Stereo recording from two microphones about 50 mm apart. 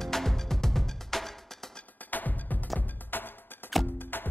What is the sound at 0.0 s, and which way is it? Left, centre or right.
Music, centre.